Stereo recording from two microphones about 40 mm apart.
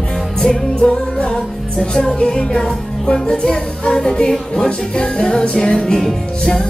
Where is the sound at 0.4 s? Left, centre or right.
Centre.